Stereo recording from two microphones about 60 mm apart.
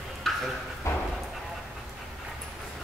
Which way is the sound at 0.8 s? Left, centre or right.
Left.